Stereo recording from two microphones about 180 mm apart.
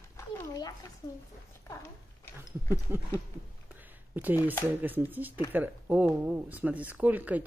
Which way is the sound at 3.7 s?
10° right (ahead or behind).